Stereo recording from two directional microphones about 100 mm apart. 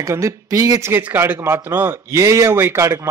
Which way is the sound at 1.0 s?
20° right (ahead or behind).